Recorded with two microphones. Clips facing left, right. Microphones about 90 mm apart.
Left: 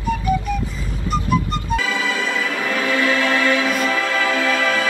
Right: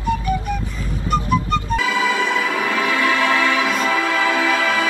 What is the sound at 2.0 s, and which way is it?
Music, 15° right (ahead or behind).